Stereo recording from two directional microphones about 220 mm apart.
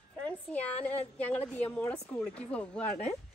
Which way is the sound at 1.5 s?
10° left (ahead or behind).